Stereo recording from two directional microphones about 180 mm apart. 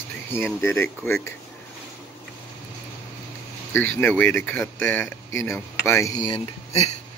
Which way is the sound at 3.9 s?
10° left (ahead or behind).